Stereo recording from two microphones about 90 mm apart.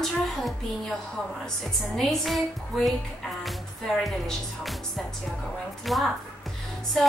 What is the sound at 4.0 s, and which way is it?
A woman's voice, centre (ahead or behind).